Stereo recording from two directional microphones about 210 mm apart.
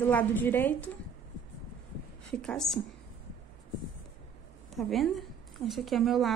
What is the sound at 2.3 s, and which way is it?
Speech, 5° left (ahead or behind).